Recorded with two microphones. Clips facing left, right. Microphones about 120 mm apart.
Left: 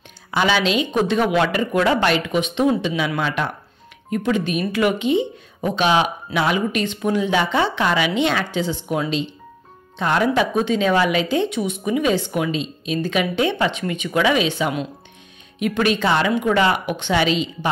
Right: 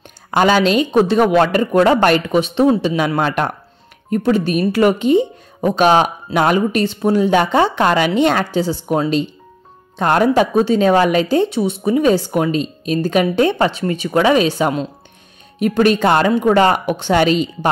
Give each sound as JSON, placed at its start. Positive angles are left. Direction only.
{"t": 0.3, "sound": "a woman's voice", "side_deg": -45}
{"t": 3.2, "sound": "a woman's voice", "side_deg": -50}
{"t": 4.1, "sound": "a woman's voice", "side_deg": -40}